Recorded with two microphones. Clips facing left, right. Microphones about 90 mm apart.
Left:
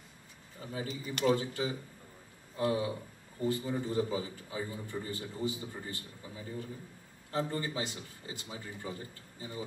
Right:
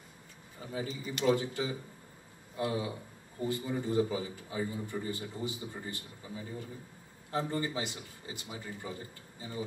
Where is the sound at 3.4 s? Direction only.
20° right (ahead or behind).